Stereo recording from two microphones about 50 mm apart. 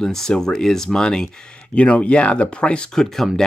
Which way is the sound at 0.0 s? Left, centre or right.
Centre.